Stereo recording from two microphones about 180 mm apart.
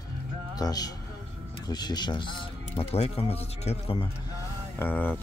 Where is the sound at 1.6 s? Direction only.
25° left (ahead or behind).